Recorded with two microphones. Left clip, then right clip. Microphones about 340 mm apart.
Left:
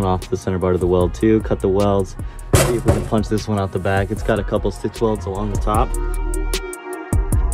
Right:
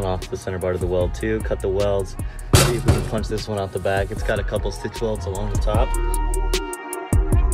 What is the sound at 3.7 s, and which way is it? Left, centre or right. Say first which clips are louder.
Speech: left 1 dB; centre.